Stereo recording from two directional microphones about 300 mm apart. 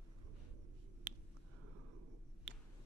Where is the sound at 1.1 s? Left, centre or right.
Right.